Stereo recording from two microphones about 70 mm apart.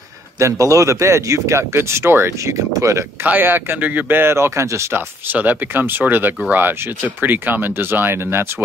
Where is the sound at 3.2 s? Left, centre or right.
Right.